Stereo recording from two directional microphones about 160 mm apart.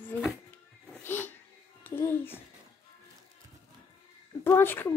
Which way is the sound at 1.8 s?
15° left (ahead or behind).